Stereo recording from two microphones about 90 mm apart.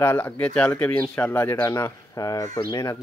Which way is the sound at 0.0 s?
25° left (ahead or behind).